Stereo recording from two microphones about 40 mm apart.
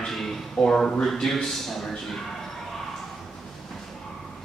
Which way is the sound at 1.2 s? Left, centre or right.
Centre.